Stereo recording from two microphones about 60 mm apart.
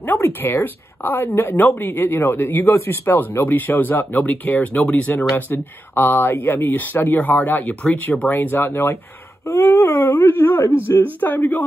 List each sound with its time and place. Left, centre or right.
0.0 s speech: left
5.5 s speech: left
9.5 s a sound: left
10.0 s speech: left